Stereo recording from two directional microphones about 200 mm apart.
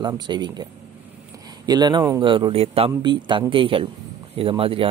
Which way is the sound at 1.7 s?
20° right (ahead or behind).